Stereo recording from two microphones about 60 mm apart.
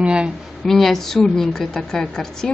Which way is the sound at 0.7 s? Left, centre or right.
Centre.